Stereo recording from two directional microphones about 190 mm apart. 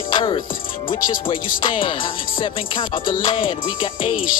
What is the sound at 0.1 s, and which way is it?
Speech, 25° left (ahead or behind).